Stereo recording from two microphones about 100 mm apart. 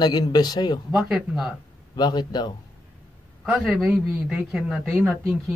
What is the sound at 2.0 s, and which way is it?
Speech, 45° left (ahead or behind).